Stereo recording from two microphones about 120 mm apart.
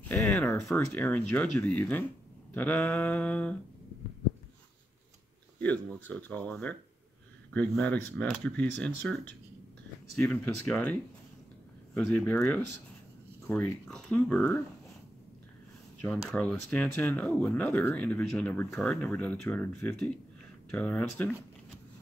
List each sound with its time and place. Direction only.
0.0 s a sound: 15° left (ahead or behind)
0.7 s speech: 15° left (ahead or behind)
5.6 s speech: 15° left (ahead or behind)
10.1 s speech: 15° left (ahead or behind)
12.0 s speech: 10° left (ahead or behind)
16.0 s speech: 10° left (ahead or behind)